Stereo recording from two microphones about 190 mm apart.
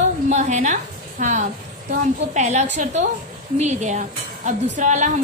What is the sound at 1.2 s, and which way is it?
A woman's voice, 40° right (ahead or behind).